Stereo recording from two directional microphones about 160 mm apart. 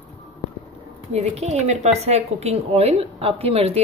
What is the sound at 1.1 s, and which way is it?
A woman's voice, 40° right (ahead or behind).